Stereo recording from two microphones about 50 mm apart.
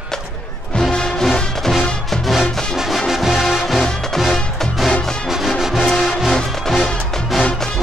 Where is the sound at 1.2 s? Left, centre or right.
Centre.